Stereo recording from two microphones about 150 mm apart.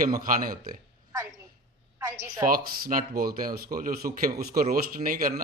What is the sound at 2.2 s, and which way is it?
A man's voice, 70° right (ahead or behind).